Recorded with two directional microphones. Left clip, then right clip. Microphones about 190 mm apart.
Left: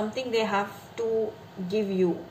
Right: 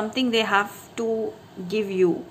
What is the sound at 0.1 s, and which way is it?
A woman's voice, 55° right (ahead or behind).